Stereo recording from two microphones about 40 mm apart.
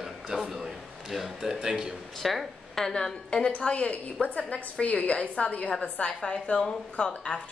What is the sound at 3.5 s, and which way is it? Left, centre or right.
A woman's voice, left.